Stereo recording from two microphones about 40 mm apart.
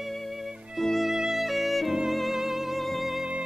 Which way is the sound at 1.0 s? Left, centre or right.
Centre.